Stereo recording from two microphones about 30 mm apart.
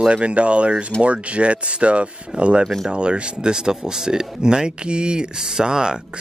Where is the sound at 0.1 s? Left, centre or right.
Right.